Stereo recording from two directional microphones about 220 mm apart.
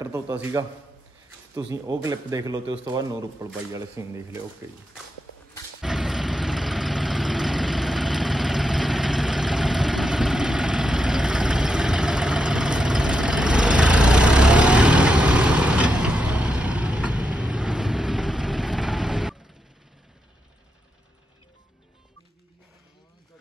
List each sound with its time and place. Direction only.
0.0 s speech: 10° right (ahead or behind)
1.7 s speech: 15° right (ahead or behind)
5.8 s vehicle: centre (ahead or behind)